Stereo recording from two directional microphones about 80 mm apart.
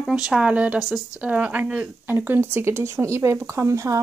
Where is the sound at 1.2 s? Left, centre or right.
Centre.